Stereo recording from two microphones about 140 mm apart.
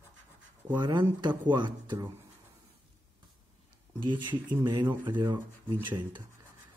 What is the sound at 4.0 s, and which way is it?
Speech, 35° right (ahead or behind).